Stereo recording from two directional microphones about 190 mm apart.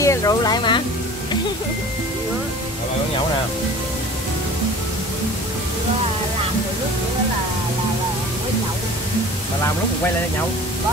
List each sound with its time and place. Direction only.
0.0 s speech: 15° left (ahead or behind)